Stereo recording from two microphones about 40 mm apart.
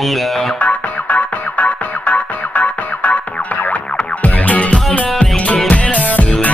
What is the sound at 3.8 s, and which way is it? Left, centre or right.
Music, left.